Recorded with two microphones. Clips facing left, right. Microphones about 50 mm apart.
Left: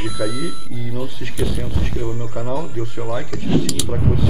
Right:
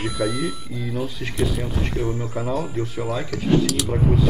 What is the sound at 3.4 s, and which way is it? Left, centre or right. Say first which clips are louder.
Speech: right 1 dB; centre.